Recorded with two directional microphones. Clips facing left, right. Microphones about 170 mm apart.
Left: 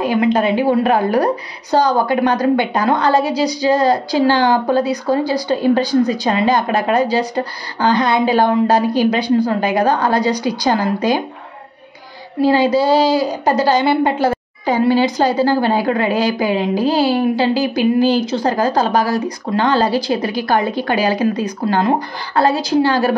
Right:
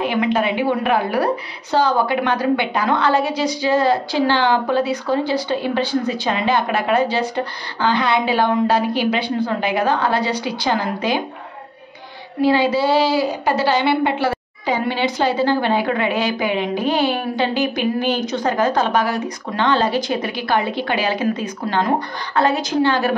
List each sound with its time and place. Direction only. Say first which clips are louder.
0.0 s a woman's voice: left 4 dB; 35° left (ahead or behind)
12.4 s a woman's voice: left 3 dB; 40° left (ahead or behind)